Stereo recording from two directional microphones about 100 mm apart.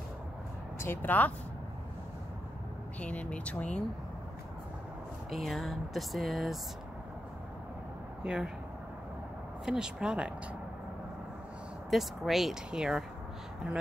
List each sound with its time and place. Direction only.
0.7 s speech: 20° left (ahead or behind)
3.0 s speech: 15° left (ahead or behind)
5.3 s speech: centre (ahead or behind)
8.2 s speech: 10° right (ahead or behind)
9.7 s speech: 5° right (ahead or behind)
11.9 s speech: centre (ahead or behind)